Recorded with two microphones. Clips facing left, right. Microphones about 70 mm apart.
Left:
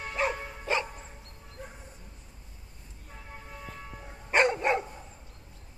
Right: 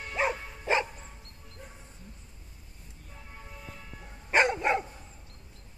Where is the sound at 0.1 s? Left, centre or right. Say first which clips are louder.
Right 1 dB; centre.